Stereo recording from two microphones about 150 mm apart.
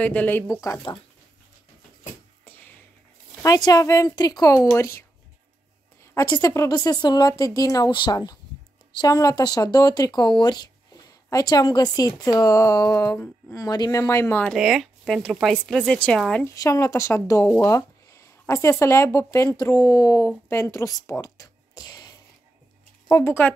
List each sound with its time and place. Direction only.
0.0 s speech: 10° left (ahead or behind)
0.6 s speech: 20° left (ahead or behind)
2.4 s a sound: 10° left (ahead or behind)
3.4 s speech: 25° left (ahead or behind)
6.1 s speech: 25° left (ahead or behind)
14.5 s speech: centre (ahead or behind)
16.4 s speech: 20° left (ahead or behind)